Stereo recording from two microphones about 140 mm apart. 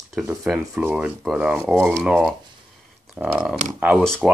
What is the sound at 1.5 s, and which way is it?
Speech, 5° left (ahead or behind).